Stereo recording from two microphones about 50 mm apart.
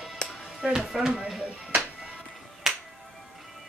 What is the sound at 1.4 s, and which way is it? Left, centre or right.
Music, right.